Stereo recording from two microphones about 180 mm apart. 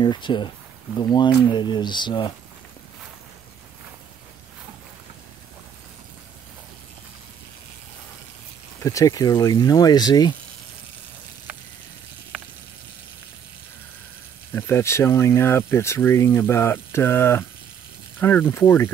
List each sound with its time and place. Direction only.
0.0 s speech: 25° left (ahead or behind)
8.8 s speech: 20° left (ahead or behind)
14.5 s speech: 15° left (ahead or behind)